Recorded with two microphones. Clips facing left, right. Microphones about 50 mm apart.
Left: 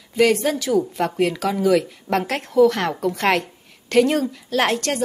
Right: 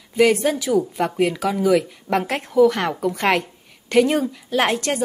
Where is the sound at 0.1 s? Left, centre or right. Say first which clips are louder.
Right 1 dB; centre.